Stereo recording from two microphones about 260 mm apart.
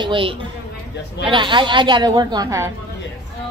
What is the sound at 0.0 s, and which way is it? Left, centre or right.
A woman's voice, centre.